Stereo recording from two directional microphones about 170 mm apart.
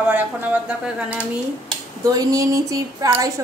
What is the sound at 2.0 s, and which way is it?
A woman's voice, 20° right (ahead or behind).